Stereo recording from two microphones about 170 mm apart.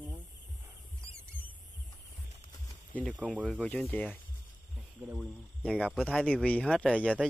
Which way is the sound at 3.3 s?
5° right (ahead or behind).